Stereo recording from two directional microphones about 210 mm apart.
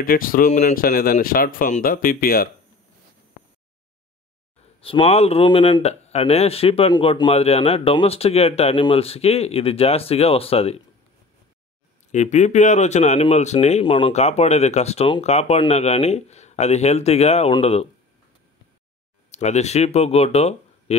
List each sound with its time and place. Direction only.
0.0 s speech: 40° left (ahead or behind)
4.8 s speech: 30° left (ahead or behind)
12.1 s speech: 35° left (ahead or behind)
19.3 s speech: 35° left (ahead or behind)